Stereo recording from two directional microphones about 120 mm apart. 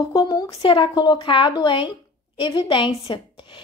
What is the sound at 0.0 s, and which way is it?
A woman's voice, 35° left (ahead or behind).